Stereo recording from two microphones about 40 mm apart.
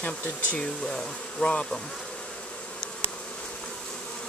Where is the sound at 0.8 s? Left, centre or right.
Centre.